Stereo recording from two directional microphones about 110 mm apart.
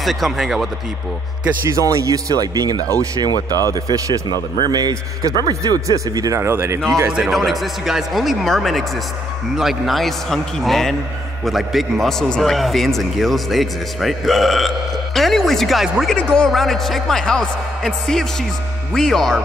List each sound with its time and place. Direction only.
0.0 s a man's voice: centre (ahead or behind)
1.7 s speech: 30° right (ahead or behind)
7.1 s a man's voice: 5° right (ahead or behind)